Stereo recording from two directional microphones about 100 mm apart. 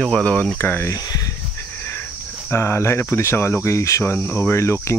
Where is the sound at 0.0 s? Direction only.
10° left (ahead or behind).